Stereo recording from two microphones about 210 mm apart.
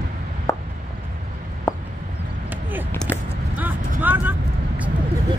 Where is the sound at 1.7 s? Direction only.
10° left (ahead or behind).